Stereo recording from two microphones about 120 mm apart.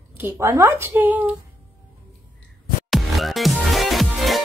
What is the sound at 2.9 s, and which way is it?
Music, centre (ahead or behind).